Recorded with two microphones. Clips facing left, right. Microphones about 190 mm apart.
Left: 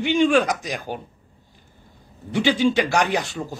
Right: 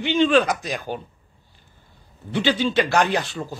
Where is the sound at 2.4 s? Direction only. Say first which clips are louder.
Left 2 dB; 15° left (ahead or behind).